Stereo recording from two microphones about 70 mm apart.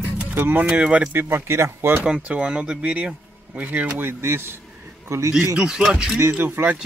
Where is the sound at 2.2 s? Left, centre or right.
Centre.